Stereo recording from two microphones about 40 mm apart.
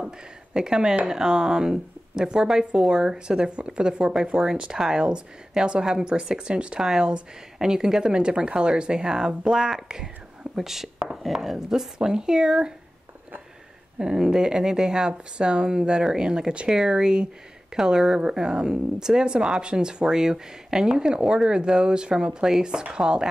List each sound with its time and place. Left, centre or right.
0.6 s speech: centre
13.9 s speech: centre